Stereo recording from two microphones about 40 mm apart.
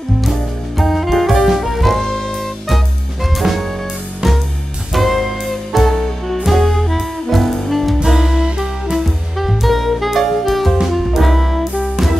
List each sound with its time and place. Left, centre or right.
0.2 s music: centre
3.3 s jazz: centre
4.9 s music: centre
8.2 s music: centre
8.9 s music: centre